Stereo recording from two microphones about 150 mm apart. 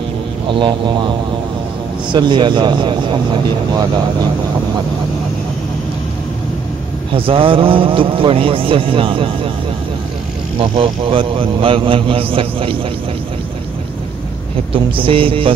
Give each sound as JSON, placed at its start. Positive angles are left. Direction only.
{"t": 0.5, "sound": "speech", "side_deg": -30}
{"t": 2.1, "sound": "speech", "side_deg": -30}
{"t": 7.2, "sound": "speech", "side_deg": -35}
{"t": 10.6, "sound": "speech", "side_deg": -35}
{"t": 14.7, "sound": "speech", "side_deg": -35}